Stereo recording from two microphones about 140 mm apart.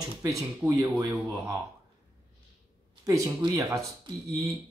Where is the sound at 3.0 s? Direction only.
20° right (ahead or behind).